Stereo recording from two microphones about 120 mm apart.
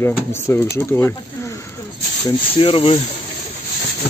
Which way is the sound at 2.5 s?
50° left (ahead or behind).